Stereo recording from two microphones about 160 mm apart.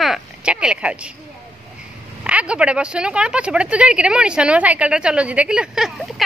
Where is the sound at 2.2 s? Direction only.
5° right (ahead or behind).